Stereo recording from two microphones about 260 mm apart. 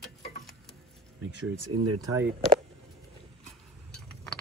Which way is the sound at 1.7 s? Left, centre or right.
Right.